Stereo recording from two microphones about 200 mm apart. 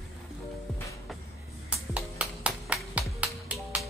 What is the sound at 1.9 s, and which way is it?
Music, 5° right (ahead or behind).